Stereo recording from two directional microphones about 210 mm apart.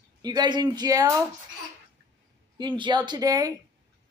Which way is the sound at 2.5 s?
20° right (ahead or behind).